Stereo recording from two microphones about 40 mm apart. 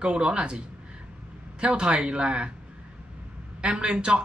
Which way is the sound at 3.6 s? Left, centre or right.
Right.